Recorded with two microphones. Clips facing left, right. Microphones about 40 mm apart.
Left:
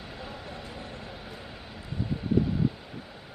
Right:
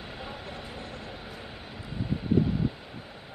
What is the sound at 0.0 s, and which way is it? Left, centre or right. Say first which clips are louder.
Vehicle: right 1 dB; centre.